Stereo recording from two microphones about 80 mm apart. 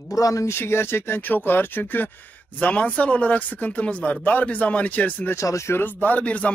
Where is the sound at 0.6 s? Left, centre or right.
Left.